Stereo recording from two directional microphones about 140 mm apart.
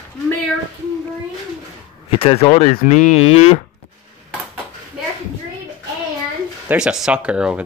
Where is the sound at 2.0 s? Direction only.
40° left (ahead or behind).